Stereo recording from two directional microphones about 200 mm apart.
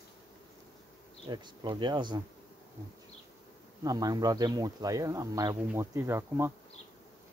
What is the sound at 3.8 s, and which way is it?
Speech, 20° right (ahead or behind).